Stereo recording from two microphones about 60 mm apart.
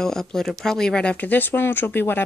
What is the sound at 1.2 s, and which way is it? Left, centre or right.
Speech, left.